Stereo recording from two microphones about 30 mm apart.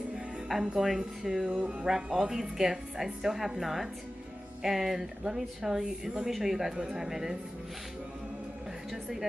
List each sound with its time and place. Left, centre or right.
0.7 s a woman's voice: centre
1.5 s music: right
2.1 s a woman's voice: centre